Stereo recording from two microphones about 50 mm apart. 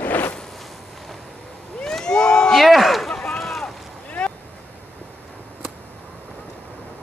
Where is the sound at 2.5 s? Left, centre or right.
Centre.